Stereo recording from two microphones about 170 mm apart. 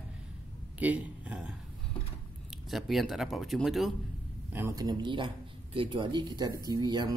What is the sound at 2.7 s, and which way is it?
Speech, centre (ahead or behind).